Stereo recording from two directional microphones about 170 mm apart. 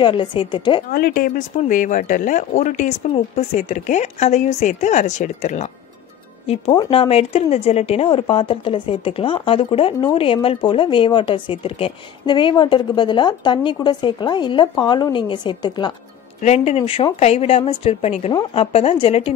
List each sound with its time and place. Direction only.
0.0 s speech: 30° left (ahead or behind)
0.9 s a woman's voice: 60° left (ahead or behind); by 15.9 s 25° left (ahead or behind)
16.3 s speech: 40° left (ahead or behind)